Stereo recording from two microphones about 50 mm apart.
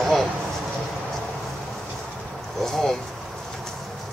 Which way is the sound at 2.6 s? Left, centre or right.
Centre.